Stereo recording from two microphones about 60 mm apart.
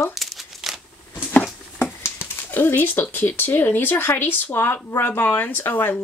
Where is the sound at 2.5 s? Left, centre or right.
Left.